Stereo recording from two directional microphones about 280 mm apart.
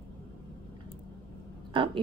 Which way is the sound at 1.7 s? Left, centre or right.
Centre.